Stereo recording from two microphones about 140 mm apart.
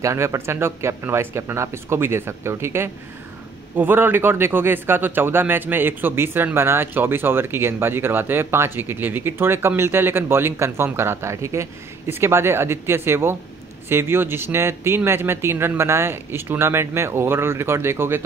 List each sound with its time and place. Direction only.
0.0 s speech: 20° right (ahead or behind)